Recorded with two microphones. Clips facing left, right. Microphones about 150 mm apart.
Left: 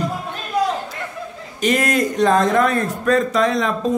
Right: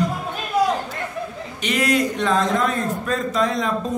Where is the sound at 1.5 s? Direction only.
45° left (ahead or behind); by 3.7 s 75° left (ahead or behind).